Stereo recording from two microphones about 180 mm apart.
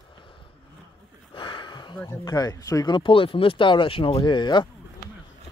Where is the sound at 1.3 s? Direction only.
30° left (ahead or behind).